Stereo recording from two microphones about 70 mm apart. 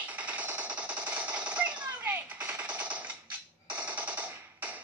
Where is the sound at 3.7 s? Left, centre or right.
Right.